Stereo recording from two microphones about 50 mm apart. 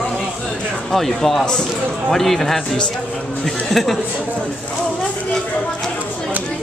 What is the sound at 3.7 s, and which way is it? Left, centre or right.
Speech, centre.